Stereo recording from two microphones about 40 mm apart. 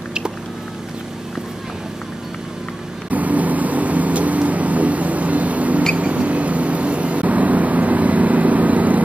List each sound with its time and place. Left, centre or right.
3.1 s vehicle: right